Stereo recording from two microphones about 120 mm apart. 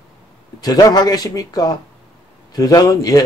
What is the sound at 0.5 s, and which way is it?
A man's voice, 30° left (ahead or behind).